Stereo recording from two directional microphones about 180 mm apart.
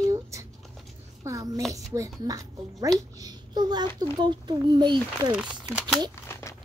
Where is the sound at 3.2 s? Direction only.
25° right (ahead or behind).